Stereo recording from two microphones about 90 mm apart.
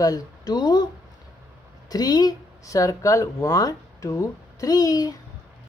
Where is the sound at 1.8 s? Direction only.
45° left (ahead or behind).